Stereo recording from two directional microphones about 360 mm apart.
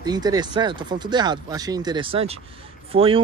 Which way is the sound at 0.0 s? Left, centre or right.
Centre.